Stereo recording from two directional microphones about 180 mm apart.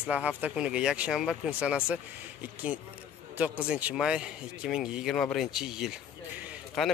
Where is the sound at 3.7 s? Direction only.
5° right (ahead or behind).